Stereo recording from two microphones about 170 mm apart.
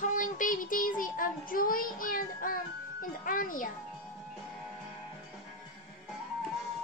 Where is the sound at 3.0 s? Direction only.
55° left (ahead or behind).